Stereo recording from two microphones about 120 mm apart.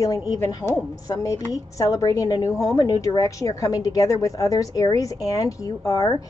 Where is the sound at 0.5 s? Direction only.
30° left (ahead or behind).